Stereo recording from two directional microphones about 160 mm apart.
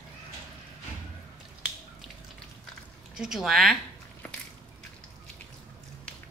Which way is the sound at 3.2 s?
Centre (ahead or behind).